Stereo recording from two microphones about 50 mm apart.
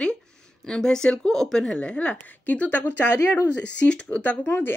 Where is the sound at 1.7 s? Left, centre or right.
Left.